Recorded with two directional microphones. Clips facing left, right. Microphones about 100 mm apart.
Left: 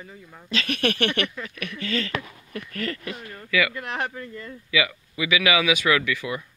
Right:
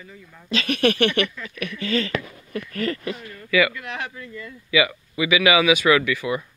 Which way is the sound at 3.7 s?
40° left (ahead or behind).